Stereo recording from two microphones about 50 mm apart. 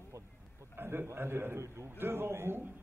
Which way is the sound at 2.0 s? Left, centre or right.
Right.